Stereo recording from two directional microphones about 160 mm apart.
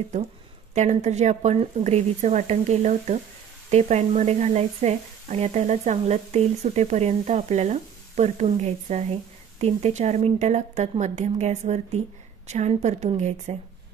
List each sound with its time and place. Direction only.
0.7 s a woman's voice: 45° right (ahead or behind)